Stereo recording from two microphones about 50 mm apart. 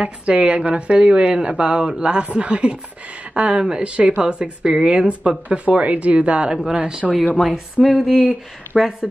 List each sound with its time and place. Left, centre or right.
0.0 s a woman's voice: right
7.4 s speech: centre